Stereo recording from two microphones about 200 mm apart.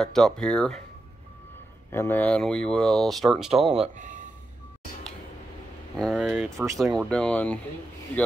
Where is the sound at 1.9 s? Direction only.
10° left (ahead or behind).